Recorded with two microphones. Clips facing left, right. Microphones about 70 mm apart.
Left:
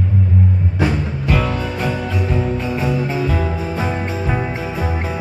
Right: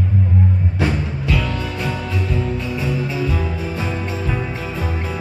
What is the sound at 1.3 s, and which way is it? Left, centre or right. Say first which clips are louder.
Music: left 4 dB; left.